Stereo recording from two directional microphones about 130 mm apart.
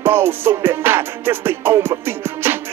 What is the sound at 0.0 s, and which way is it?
Music, 15° right (ahead or behind).